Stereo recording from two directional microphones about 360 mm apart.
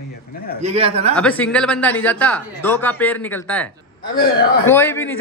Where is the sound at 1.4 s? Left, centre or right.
Centre.